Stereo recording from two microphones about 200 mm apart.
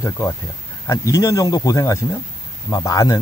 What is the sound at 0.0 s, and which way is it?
Speech, 15° left (ahead or behind).